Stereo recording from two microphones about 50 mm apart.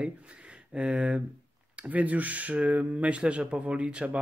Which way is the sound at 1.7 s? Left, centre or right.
Right.